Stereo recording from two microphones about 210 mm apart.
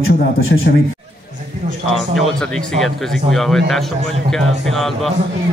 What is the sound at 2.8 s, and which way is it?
Speech, centre (ahead or behind).